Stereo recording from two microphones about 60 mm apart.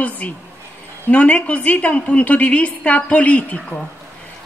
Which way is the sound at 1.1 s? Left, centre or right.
Left.